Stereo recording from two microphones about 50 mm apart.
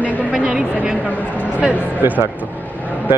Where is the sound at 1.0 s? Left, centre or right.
Left.